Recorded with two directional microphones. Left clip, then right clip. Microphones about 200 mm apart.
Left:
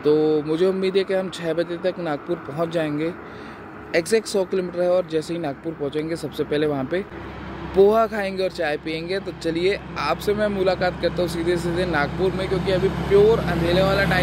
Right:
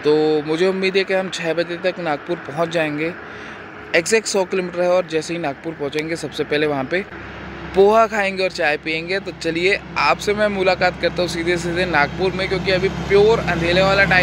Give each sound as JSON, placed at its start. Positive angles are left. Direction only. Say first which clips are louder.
{"t": 0.0, "sound": "speech", "louder": "right 2 dB", "side_deg": 5}
{"t": 12.8, "sound": "speech", "louder": "right 2 dB", "side_deg": -20}
{"t": 13.7, "sound": "speech", "louder": "right 5 dB", "side_deg": 0}